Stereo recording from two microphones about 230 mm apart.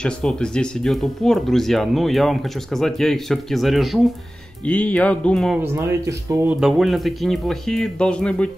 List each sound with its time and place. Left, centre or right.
0.0 s speech: centre
5.6 s speech: centre